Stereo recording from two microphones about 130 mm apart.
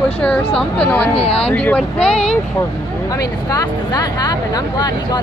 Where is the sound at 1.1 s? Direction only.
50° left (ahead or behind).